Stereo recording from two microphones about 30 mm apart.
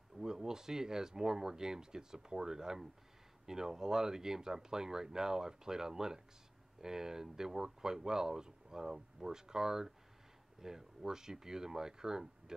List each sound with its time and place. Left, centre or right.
0.2 s speech: centre